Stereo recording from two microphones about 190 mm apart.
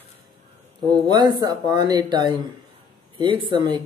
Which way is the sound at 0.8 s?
20° right (ahead or behind).